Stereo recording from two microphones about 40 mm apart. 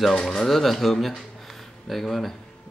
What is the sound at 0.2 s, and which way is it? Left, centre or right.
Speech, centre.